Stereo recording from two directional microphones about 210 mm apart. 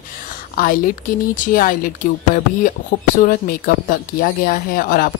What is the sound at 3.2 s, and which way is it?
Speech, 40° left (ahead or behind).